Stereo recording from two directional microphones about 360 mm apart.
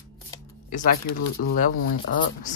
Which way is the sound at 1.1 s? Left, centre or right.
Left.